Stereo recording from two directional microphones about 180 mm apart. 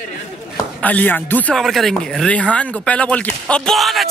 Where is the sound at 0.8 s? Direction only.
10° left (ahead or behind).